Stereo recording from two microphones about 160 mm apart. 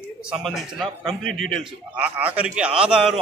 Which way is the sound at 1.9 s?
10° right (ahead or behind).